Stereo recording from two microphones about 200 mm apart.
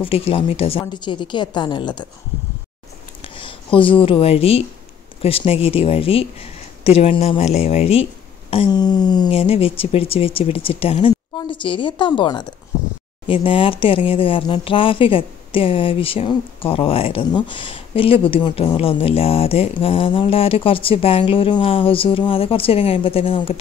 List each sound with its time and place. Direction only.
0.0 s speech: 30° left (ahead or behind)
3.3 s speech: 25° left (ahead or behind)